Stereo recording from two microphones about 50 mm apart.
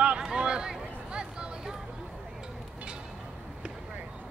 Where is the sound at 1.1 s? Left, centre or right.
Centre.